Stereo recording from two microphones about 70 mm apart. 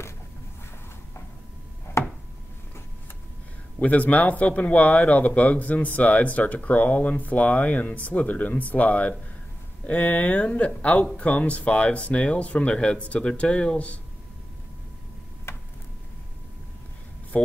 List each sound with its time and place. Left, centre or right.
2.0 s chopping: left
3.8 s speech: left